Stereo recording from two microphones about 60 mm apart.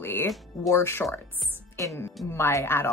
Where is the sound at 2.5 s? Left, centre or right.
Left.